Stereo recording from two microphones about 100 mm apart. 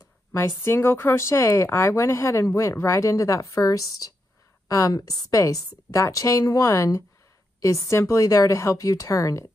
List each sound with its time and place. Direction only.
0.3 s a woman's voice: 25° left (ahead or behind)